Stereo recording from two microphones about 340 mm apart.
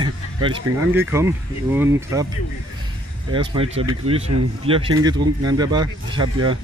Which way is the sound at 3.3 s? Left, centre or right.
Centre.